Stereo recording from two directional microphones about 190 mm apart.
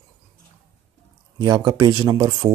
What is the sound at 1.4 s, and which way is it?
Speech, 25° right (ahead or behind).